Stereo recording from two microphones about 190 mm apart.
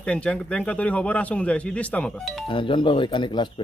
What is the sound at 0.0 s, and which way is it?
A man's voice, 5° left (ahead or behind).